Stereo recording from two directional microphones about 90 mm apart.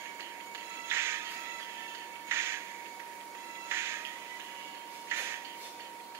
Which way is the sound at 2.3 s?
30° right (ahead or behind).